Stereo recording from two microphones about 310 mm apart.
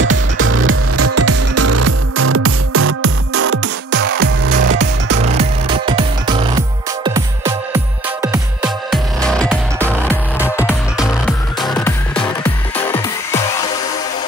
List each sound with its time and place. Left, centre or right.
0.0 s music: right
5.2 s music: centre